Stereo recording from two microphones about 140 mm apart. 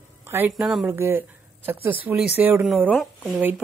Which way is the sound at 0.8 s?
15° right (ahead or behind).